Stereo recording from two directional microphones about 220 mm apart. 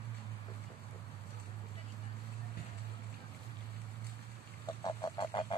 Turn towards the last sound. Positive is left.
turn(degrees=20)  # may be behind; listen again after turning